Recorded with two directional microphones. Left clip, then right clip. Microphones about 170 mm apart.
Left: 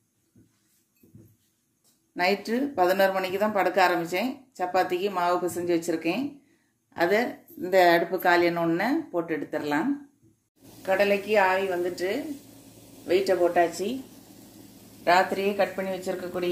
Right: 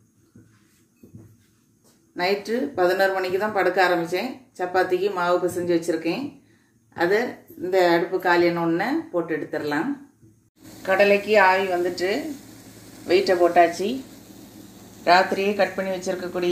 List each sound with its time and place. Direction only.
2.1 s speech: 45° left (ahead or behind)
10.8 s a woman's voice: 5° left (ahead or behind)
15.0 s a woman's voice: 10° left (ahead or behind)